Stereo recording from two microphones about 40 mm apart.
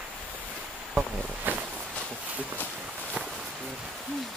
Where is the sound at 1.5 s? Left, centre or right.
Right.